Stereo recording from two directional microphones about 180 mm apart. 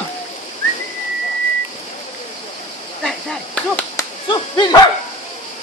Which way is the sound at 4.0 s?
25° left (ahead or behind).